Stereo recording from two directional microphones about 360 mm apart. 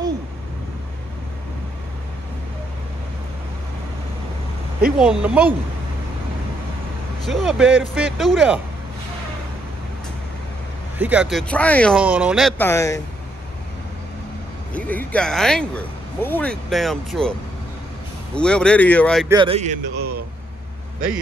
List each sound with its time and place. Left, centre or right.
4.9 s speech: centre
7.2 s speech: centre
11.0 s speech: centre
14.7 s speech: centre
19.3 s speech: centre